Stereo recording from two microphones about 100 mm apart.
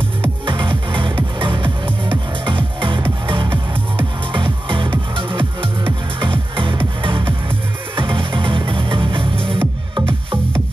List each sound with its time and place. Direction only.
0.5 s music: 55° right (ahead or behind)